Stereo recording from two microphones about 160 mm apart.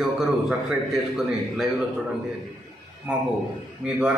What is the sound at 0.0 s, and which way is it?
A man's voice, 5° right (ahead or behind).